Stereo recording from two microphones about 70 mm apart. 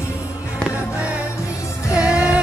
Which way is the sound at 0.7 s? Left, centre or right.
Centre.